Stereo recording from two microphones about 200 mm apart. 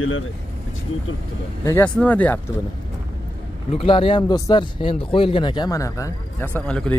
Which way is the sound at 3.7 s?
30° left (ahead or behind).